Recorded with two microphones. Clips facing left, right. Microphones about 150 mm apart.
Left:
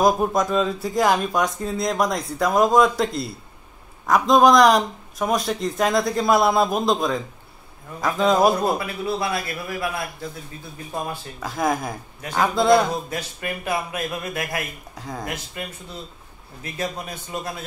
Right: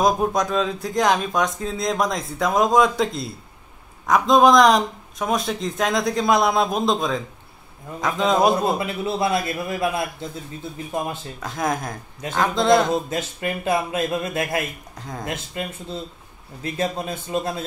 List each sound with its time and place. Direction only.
0.0 s speech: centre (ahead or behind)
8.7 s speech: 20° right (ahead or behind)
11.3 s speech: centre (ahead or behind)
12.9 s speech: 25° right (ahead or behind)
15.0 s speech: centre (ahead or behind)
15.2 s speech: 25° right (ahead or behind)